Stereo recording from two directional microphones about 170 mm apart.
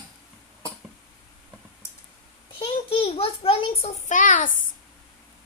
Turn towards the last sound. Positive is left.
turn(degrees=50)  # may be behind; listen again after turning